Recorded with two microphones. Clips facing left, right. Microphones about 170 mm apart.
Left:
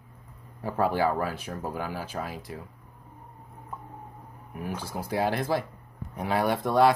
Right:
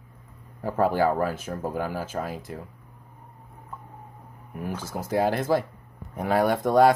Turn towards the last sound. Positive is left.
turn(degrees=-45)  # may be behind; listen again after turning